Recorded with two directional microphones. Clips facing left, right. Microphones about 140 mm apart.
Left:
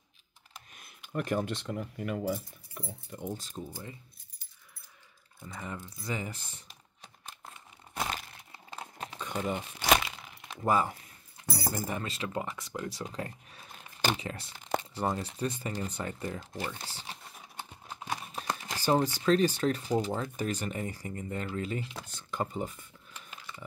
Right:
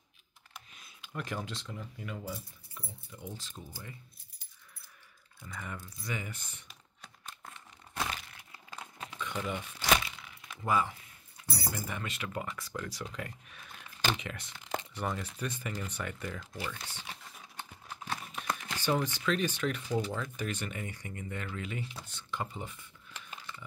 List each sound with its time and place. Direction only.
0.7 s speech: 50° left (ahead or behind)
5.4 s speech: 25° left (ahead or behind)
7.9 s crumpling: 25° left (ahead or behind); by 9.8 s 45° left (ahead or behind)
10.2 s a sound: 35° left (ahead or behind)
11.6 s speech: 40° left (ahead or behind)
17.6 s a sound: 15° left (ahead or behind)
18.3 s speech: 35° left (ahead or behind)
23.2 s dog: 90° right